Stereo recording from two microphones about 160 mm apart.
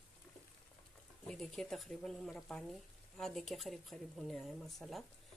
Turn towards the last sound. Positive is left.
turn(degrees=0)  # may be behind; listen again after turning